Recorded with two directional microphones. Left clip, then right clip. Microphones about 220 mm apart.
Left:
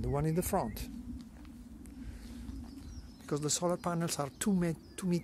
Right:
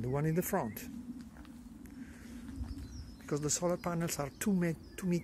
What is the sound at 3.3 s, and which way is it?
Speech, 20° left (ahead or behind).